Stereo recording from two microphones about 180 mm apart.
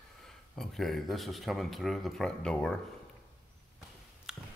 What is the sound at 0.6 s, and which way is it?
Speech, centre (ahead or behind).